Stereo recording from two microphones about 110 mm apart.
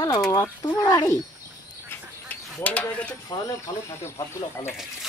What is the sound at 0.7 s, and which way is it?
Speech, 30° left (ahead or behind).